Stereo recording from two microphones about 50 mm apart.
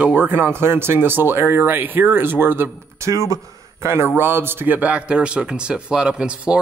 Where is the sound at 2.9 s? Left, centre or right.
Right.